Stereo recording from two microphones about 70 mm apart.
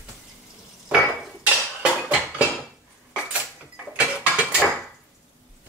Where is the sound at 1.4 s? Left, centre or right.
Centre.